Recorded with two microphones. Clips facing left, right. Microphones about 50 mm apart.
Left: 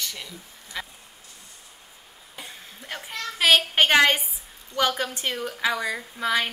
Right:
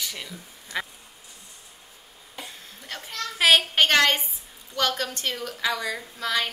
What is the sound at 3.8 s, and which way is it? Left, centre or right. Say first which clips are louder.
A woman's voice: left 2 dB; centre.